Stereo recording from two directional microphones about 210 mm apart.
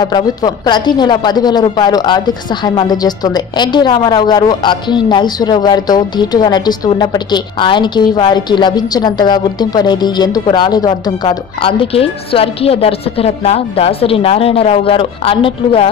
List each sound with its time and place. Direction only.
0.0 s a woman's voice: 20° left (ahead or behind)